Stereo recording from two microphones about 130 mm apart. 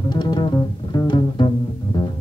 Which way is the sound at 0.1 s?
35° left (ahead or behind).